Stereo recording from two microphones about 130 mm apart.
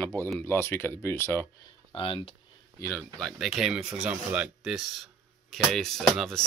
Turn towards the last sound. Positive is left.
turn(degrees=5)  # may be behind; listen again after turning